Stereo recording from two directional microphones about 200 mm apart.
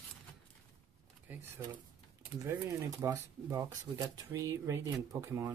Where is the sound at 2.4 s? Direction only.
15° right (ahead or behind).